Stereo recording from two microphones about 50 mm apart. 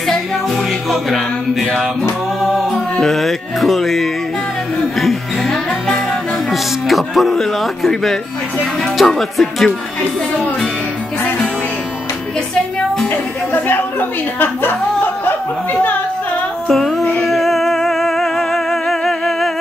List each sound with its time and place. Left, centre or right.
0.0 s music: centre
6.5 s music: centre
7.9 s speech: centre
8.8 s music: centre
13.7 s speech: left
16.6 s music: centre